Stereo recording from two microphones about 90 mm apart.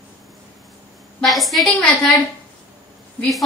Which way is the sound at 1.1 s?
Centre (ahead or behind).